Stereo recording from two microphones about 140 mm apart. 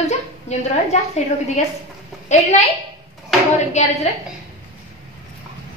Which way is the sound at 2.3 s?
50° left (ahead or behind).